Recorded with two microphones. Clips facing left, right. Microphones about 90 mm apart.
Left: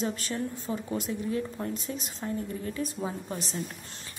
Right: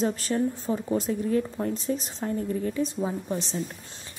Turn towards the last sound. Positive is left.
turn(degrees=-25)  # may be behind; listen again after turning